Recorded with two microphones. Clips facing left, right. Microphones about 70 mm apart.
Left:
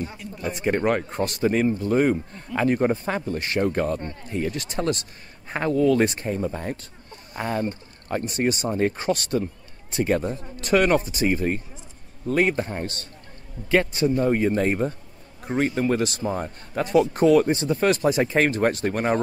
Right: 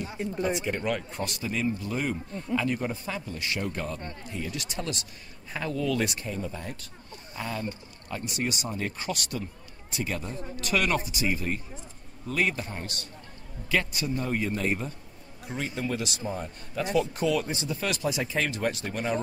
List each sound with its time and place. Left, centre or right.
0.4 s a man's voice: left